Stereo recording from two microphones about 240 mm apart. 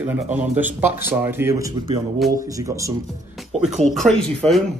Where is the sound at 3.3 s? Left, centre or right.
Centre.